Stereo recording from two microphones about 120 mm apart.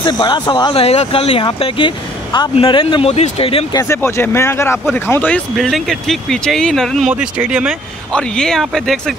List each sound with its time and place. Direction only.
0.0 s speech: 40° left (ahead or behind)
0.7 s speech: 55° left (ahead or behind)
3.7 s speech: 25° left (ahead or behind)
5.6 s speech: centre (ahead or behind)
7.1 s speech: 10° right (ahead or behind)
8.1 s speech: 5° left (ahead or behind)